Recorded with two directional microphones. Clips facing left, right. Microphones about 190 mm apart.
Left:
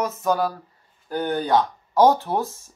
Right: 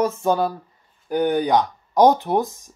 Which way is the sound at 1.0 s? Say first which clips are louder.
Right 5 dB; 15° right (ahead or behind).